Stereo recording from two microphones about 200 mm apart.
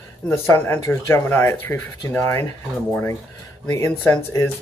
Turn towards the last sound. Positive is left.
turn(degrees=10)  # may be behind; listen again after turning